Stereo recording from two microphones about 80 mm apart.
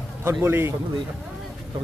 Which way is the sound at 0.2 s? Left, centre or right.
Right.